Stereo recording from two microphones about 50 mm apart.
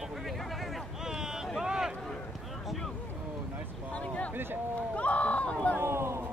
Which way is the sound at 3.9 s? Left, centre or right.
Left.